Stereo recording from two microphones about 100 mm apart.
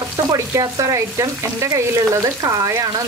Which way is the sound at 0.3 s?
35° right (ahead or behind).